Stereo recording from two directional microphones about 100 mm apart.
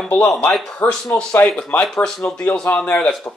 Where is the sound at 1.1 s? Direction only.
15° left (ahead or behind).